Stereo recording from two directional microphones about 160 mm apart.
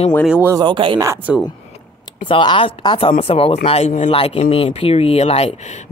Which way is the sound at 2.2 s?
30° left (ahead or behind).